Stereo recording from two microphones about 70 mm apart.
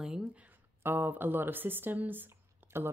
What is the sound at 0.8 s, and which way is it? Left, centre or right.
Speech, right.